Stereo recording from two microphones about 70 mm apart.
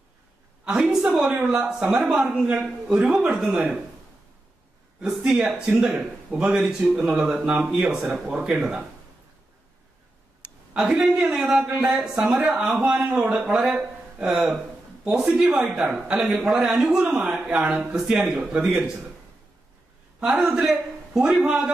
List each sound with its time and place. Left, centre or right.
0.7 s a man's voice: centre
5.0 s a man's voice: centre
10.7 s a man's voice: centre
15.8 s a man's voice: right
16.4 s a man's voice: centre
20.2 s a man's voice: centre